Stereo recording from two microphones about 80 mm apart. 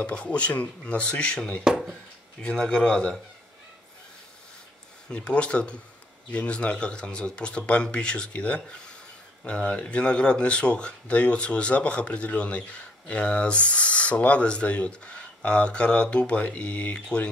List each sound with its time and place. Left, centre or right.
0.0 s speech: centre
5.1 s speech: centre